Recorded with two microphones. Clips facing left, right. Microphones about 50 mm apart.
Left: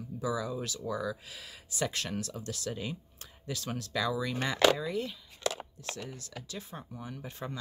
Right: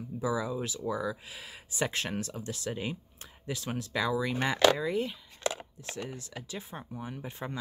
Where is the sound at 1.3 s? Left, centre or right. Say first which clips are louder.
Right 2 dB; right.